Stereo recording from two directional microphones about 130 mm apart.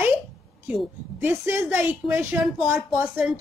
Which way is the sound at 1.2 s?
15° right (ahead or behind).